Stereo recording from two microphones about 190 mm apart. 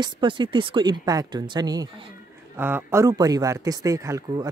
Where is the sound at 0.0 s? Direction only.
25° right (ahead or behind).